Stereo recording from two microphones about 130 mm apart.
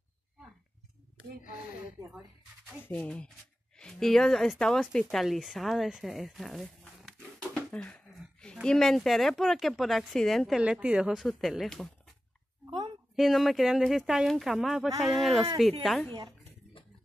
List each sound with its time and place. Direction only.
2.8 s speech: 10° left (ahead or behind)
8.1 s a sound: 5° left (ahead or behind)
8.6 s speech: 5° left (ahead or behind)
10.6 s speech: 10° right (ahead or behind)
12.6 s a sound: 30° right (ahead or behind)
13.1 s speech: centre (ahead or behind)